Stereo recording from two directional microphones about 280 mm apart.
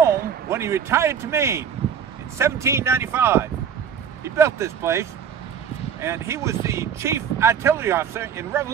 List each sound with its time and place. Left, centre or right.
0.5 s speech: centre